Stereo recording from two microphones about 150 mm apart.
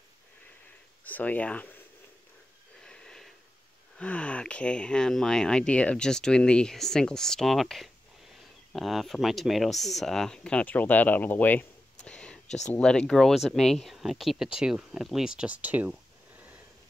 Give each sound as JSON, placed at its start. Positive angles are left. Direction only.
{"t": 1.0, "sound": "speech", "side_deg": 10}
{"t": 2.8, "sound": "wheeze", "side_deg": 5}
{"t": 4.0, "sound": "speech", "side_deg": 10}
{"t": 12.4, "sound": "speech", "side_deg": 50}
{"t": 12.7, "sound": "speech", "side_deg": 5}